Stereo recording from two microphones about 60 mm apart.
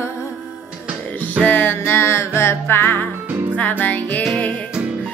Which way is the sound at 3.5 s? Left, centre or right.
Left.